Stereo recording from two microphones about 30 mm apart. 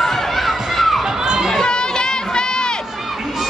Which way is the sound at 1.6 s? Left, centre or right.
Left.